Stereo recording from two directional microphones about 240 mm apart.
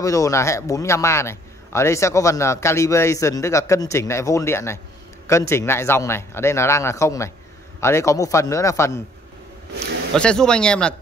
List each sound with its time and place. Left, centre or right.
0.0 s a man's voice: centre
10.1 s speech: centre